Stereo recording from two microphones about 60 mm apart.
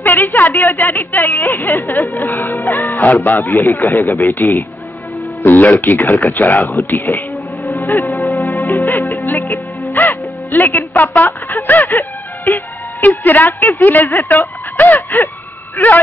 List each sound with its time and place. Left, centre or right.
0.0 s a woman's voice: left
3.0 s a woman's voice: left
3.3 s speech: left
4.2 s a woman's voice: left
8.3 s music: left
8.6 s music: left
10.9 s a woman's voice: left